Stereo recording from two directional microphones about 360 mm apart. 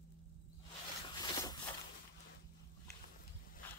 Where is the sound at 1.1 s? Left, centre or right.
Centre.